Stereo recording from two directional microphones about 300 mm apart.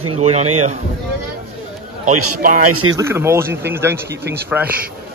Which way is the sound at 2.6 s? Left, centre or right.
Right.